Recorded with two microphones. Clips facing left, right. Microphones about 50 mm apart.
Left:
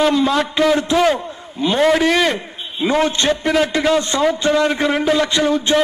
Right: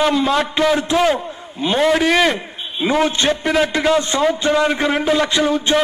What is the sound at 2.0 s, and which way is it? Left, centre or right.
A man's voice, right.